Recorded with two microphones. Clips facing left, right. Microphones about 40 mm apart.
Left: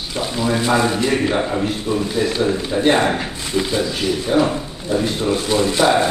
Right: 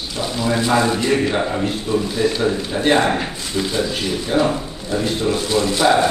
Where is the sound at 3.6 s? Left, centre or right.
Centre.